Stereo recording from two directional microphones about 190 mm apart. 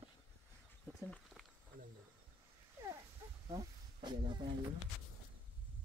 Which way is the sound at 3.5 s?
25° right (ahead or behind).